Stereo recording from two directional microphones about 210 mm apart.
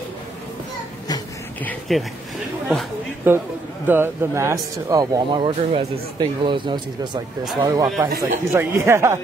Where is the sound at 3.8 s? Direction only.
10° right (ahead or behind).